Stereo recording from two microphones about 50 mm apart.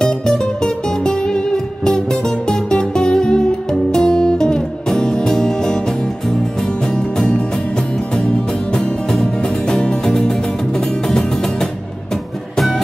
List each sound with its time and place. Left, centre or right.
1.0 s music: centre
7.2 s music: centre
8.7 s music: centre